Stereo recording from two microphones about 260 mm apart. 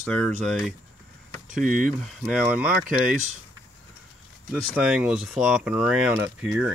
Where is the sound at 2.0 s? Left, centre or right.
Centre.